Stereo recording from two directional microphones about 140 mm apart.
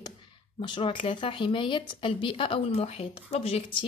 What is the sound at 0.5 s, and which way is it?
A woman's voice, 35° left (ahead or behind).